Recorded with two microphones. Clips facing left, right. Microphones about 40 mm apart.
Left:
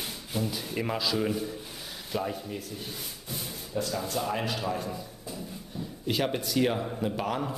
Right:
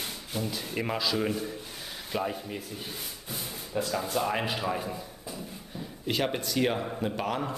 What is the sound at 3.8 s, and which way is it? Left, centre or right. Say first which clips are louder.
A man's voice: right 2 dB; centre.